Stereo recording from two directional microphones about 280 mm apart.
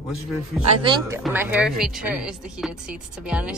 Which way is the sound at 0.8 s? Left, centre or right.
Centre.